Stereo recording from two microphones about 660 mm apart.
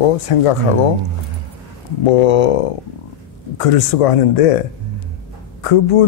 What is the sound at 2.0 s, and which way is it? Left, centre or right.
Speech, left.